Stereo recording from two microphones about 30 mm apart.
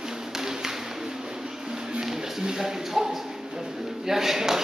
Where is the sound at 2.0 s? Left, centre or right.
Centre.